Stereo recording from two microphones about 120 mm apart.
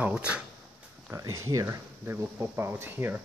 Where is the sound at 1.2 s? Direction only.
25° right (ahead or behind).